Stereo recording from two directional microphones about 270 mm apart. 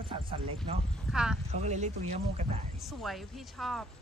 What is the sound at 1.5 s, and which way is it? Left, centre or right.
Speech, right.